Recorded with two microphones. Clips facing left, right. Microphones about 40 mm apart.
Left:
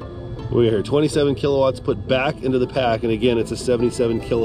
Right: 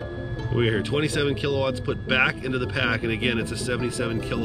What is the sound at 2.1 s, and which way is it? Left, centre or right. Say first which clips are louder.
Speech: left 3 dB; right.